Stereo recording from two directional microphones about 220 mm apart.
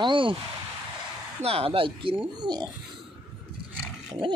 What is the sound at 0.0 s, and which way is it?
Speech, 20° right (ahead or behind).